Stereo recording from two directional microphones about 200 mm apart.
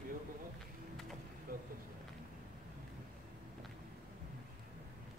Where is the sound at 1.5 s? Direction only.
50° right (ahead or behind).